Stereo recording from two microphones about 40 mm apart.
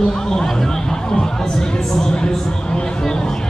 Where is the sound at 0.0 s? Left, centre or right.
Centre.